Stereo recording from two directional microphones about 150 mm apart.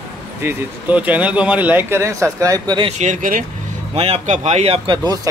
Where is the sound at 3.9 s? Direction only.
45° right (ahead or behind).